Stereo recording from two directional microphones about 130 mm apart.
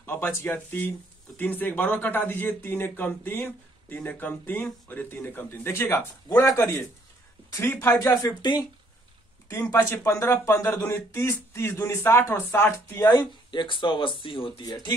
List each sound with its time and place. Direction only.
0.0 s speech: 15° left (ahead or behind); by 8.6 s 35° left (ahead or behind)
9.5 s speech: 25° left (ahead or behind)
13.5 s speech: 40° left (ahead or behind)